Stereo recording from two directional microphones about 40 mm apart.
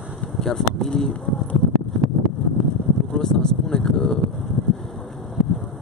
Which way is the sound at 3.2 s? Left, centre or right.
Centre.